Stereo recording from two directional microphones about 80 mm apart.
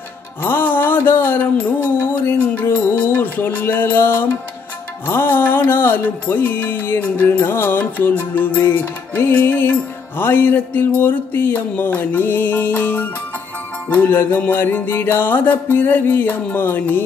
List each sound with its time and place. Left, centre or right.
0.4 s music: left